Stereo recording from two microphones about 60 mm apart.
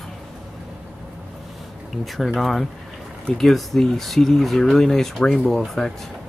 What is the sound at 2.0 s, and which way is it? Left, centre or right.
Speech, centre.